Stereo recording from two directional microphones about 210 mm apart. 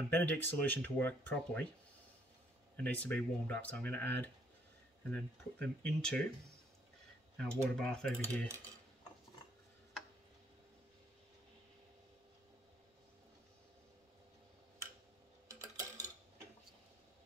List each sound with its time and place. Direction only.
0.1 s speech: 10° left (ahead or behind)
2.8 s speech: 5° left (ahead or behind)
5.1 s speech: 10° left (ahead or behind)
7.3 s cutlery: 5° left (ahead or behind)
15.6 s a sound: 15° right (ahead or behind)